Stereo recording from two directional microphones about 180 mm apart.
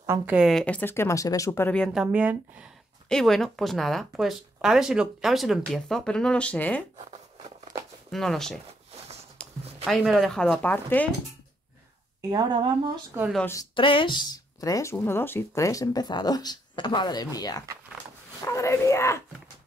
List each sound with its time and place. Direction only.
0.0 s speech: 15° right (ahead or behind)
0.4 s speech: centre (ahead or behind)
2.0 s speech: 10° right (ahead or behind)
3.1 s speech: centre (ahead or behind)
7.0 s a sound: 40° right (ahead or behind)
8.1 s speech: centre (ahead or behind)
9.4 s a sound: 5° left (ahead or behind)
9.8 s speech: centre (ahead or behind)
12.2 s a woman's voice: 20° right (ahead or behind)
13.7 s speech: 30° left (ahead or behind)